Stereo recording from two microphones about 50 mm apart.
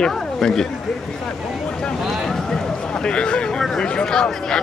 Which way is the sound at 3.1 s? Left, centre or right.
Centre.